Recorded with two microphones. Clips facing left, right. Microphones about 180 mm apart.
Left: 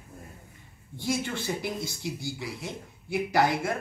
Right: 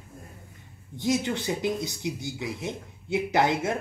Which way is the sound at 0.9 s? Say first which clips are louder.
Right 4 dB; 20° right (ahead or behind).